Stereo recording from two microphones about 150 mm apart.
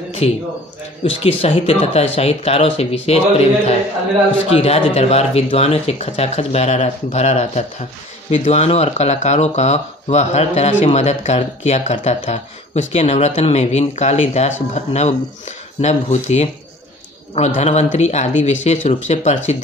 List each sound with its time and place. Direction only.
0.2 s speech: 45° left (ahead or behind)
17.6 s speech: 50° left (ahead or behind)